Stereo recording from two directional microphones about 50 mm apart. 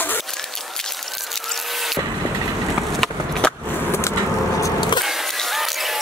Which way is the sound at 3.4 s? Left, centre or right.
Centre.